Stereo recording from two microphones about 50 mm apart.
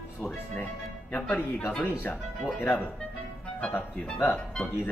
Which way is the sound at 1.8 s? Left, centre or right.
Left.